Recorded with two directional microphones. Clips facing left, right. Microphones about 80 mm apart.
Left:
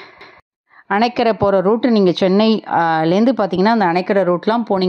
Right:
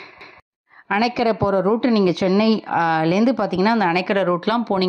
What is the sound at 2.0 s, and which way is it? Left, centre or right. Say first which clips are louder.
Speech: left 4 dB; left.